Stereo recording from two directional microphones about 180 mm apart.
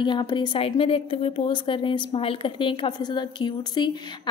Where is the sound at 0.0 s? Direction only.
25° left (ahead or behind).